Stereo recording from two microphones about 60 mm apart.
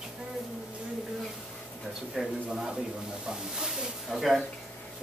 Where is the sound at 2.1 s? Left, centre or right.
Centre.